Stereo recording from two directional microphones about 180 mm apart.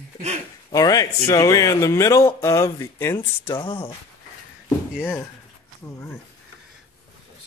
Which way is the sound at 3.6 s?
25° left (ahead or behind).